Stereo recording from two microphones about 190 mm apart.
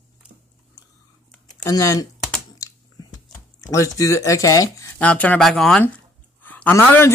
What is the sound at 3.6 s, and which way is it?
Speech, 15° left (ahead or behind).